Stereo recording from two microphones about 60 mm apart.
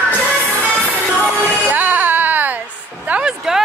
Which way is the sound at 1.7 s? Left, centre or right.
Right.